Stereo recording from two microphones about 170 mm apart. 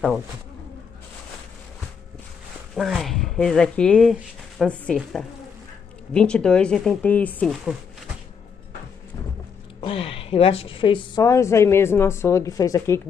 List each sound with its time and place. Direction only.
2.7 s speech: centre (ahead or behind)
9.8 s a woman's voice: 35° left (ahead or behind)
11.2 s speech: 15° left (ahead or behind)